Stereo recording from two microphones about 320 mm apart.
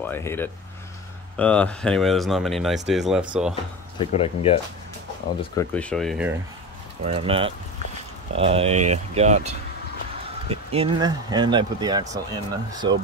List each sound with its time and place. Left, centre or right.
0.0 s speech: centre
4.0 s speech: centre
5.4 s speech: centre
7.0 s speech: centre